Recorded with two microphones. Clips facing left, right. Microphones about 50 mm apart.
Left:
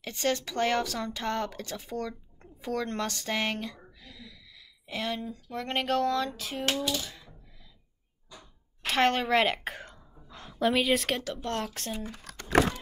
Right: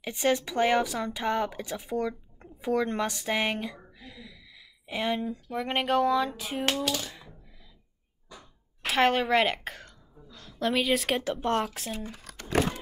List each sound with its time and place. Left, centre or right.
0.0 s speech: centre
7.0 s coin: centre
8.4 s a sound: centre
9.8 s throat clearing: left
10.6 s a woman's voice: centre
11.1 s speech: right
11.6 s speech: centre
11.9 s a sound: centre